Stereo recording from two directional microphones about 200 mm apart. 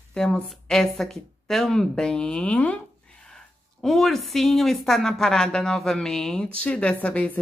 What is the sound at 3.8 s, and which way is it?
A woman's voice, centre (ahead or behind).